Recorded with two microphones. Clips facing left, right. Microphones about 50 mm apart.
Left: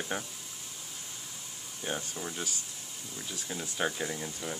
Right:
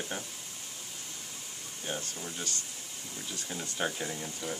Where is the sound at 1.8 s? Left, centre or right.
Centre.